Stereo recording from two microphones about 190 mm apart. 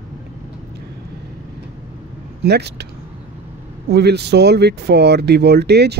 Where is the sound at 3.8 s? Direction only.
60° right (ahead or behind).